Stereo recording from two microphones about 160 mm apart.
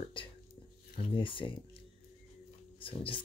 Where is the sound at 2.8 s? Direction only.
35° left (ahead or behind).